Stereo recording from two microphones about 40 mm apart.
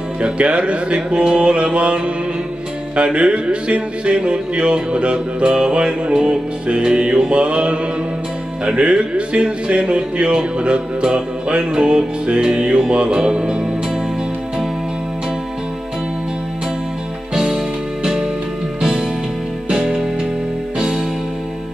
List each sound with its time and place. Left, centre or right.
0.2 s speech: right
3.0 s speech: right
17.3 s music: centre
18.8 s music: centre